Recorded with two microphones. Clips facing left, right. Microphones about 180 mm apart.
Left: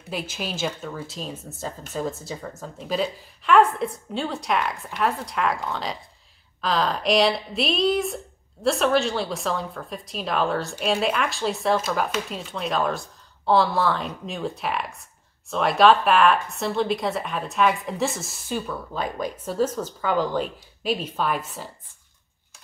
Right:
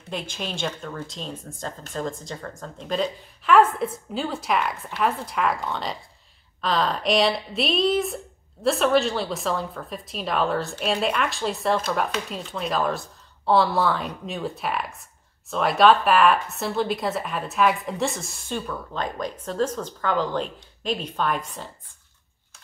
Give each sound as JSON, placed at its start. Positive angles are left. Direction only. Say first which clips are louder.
{"t": 0.1, "sound": "speech", "louder": "left 1 dB", "side_deg": 5}